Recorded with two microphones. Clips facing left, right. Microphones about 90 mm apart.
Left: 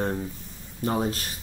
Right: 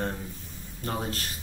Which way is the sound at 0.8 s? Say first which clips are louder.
Left 6 dB; 15° left (ahead or behind).